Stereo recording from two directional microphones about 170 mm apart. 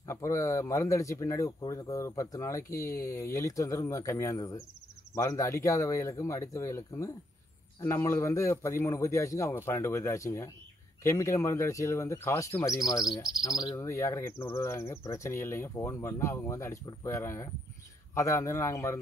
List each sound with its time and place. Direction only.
0.0 s speech: 15° left (ahead or behind)